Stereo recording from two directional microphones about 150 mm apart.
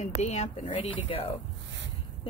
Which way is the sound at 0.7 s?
35° left (ahead or behind).